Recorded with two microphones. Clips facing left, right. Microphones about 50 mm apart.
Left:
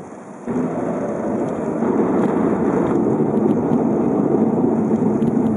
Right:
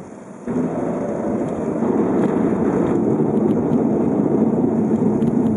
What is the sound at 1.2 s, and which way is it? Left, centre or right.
Vehicle, left.